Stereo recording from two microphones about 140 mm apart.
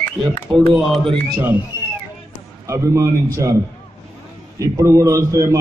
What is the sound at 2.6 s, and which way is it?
Speech, 20° right (ahead or behind).